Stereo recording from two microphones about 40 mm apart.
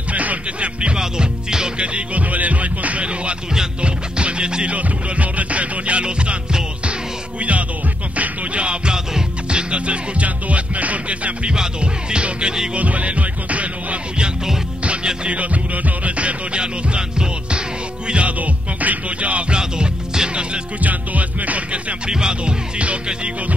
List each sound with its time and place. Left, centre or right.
0.1 s music: right; by 1.7 s centre
1.8 s music: right
4.7 s music: right
11.5 s music: right
12.7 s music: right
14.1 s music: centre
15.2 s music: right
18.4 s music: right
19.6 s music: centre
20.8 s music: right
22.1 s music: right